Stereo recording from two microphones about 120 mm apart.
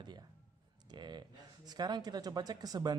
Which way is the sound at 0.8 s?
40° right (ahead or behind).